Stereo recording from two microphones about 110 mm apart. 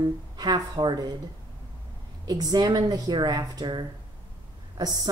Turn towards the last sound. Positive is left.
turn(degrees=-35)  # may be behind; listen again after turning